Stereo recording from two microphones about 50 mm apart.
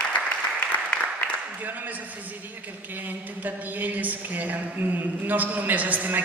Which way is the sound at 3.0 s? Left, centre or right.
Right.